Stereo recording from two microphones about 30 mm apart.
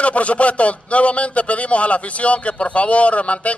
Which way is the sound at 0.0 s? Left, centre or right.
Left.